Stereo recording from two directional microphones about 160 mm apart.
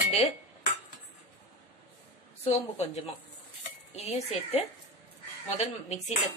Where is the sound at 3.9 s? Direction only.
40° left (ahead or behind).